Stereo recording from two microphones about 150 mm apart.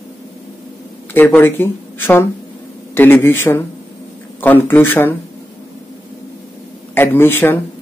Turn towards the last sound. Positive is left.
turn(degrees=15)  # may be behind; listen again after turning